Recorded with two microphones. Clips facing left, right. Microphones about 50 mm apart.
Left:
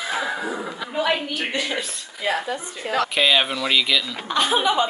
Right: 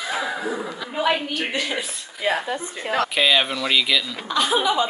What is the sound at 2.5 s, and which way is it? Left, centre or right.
Speech, right.